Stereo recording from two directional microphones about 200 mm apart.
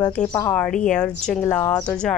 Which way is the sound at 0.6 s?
5° left (ahead or behind).